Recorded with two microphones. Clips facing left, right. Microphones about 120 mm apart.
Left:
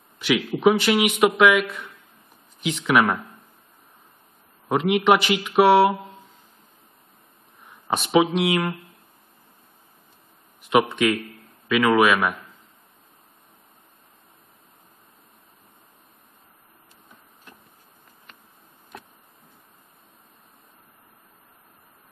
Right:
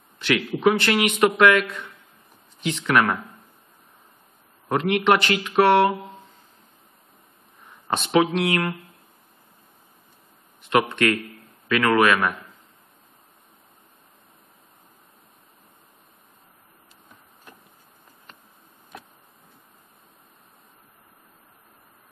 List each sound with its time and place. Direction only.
0.2 s a man's voice: 5° left (ahead or behind)
4.6 s a man's voice: 5° left (ahead or behind)
7.7 s speech: 5° left (ahead or behind)
10.7 s a man's voice: 5° left (ahead or behind)